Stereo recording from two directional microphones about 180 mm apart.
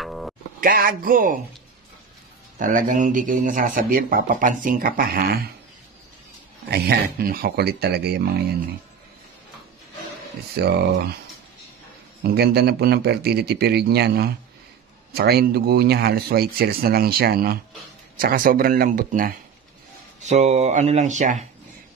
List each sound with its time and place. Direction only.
0.0 s a sound: centre (ahead or behind)
0.6 s speech: 50° right (ahead or behind)
2.6 s speech: 45° right (ahead or behind)
6.7 s speech: 60° right (ahead or behind)
10.6 s speech: 65° right (ahead or behind)
12.2 s speech: 65° right (ahead or behind)
20.2 s speech: 40° right (ahead or behind)